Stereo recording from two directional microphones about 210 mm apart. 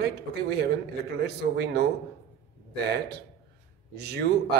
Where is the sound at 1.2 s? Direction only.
55° right (ahead or behind).